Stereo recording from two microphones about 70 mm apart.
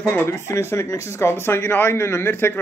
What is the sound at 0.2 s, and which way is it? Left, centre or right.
Speech, left.